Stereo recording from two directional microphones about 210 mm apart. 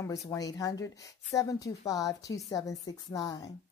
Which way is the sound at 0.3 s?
15° left (ahead or behind).